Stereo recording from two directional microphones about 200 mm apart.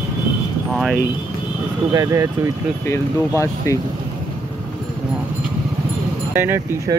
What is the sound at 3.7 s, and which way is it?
Speech, 15° left (ahead or behind).